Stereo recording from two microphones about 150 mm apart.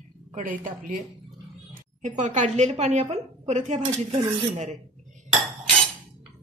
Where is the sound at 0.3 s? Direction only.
60° right (ahead or behind).